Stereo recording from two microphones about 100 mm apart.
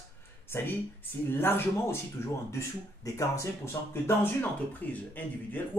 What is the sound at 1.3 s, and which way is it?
Speech, 20° left (ahead or behind).